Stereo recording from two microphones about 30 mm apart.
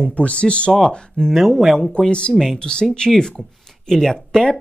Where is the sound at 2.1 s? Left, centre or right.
Left.